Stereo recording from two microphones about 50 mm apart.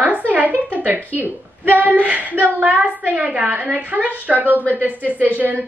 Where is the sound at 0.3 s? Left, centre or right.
Right.